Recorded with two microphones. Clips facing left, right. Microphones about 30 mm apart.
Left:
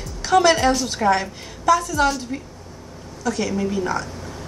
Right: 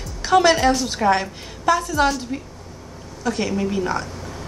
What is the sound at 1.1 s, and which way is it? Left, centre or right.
A woman's voice, centre.